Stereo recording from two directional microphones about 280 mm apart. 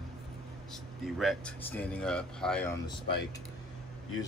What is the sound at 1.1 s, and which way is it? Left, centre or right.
Speech, centre.